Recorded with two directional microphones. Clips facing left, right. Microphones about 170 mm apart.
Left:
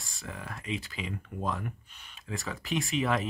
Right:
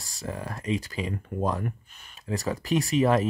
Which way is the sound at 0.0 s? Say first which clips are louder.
Right 7 dB; 40° right (ahead or behind).